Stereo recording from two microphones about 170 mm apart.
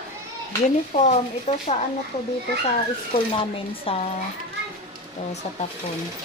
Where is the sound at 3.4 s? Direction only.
35° left (ahead or behind).